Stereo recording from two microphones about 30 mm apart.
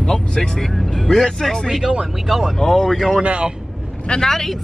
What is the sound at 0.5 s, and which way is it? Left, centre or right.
Speech, centre.